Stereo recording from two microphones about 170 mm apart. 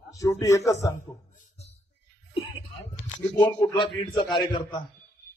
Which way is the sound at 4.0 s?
25° left (ahead or behind).